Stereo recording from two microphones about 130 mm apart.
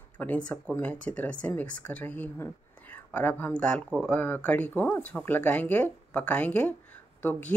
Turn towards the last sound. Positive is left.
turn(degrees=15)  # may be behind; listen again after turning